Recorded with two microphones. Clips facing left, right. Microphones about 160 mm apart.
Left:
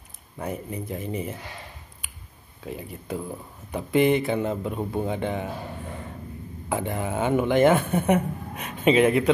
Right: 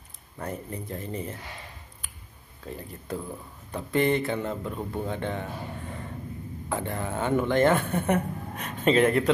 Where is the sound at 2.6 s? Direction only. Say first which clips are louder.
Left 3 dB; 10° left (ahead or behind).